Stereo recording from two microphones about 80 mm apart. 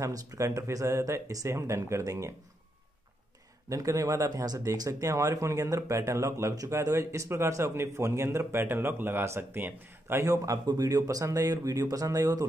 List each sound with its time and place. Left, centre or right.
0.0 s speech: right
3.6 s speech: right
10.2 s speech: right